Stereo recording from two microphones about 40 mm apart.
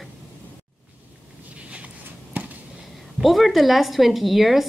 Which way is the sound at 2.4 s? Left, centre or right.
Right.